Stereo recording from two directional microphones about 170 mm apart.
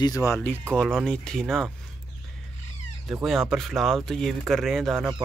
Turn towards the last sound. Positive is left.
turn(degrees=0)  # may be behind; listen again after turning